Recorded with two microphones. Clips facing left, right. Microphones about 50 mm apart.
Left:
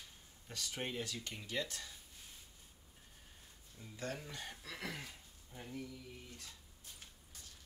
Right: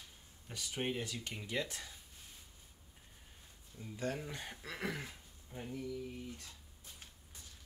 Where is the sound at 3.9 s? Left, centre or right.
Centre.